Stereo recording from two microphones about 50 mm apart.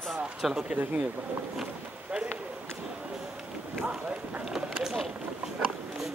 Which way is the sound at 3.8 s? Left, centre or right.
Right.